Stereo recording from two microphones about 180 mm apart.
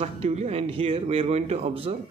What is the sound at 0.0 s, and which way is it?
Speech, 35° right (ahead or behind).